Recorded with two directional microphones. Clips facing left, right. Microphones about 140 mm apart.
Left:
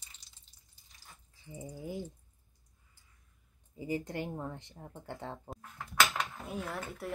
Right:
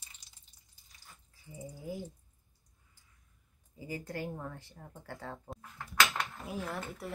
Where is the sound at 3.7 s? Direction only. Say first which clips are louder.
Left 4 dB; 20° left (ahead or behind).